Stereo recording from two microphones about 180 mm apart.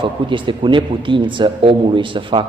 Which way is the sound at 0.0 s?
25° right (ahead or behind).